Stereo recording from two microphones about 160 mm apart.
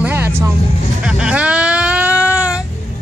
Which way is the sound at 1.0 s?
5° right (ahead or behind).